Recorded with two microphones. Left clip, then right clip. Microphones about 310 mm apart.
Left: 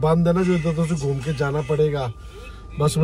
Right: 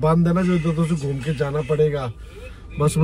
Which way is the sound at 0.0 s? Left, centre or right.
Centre.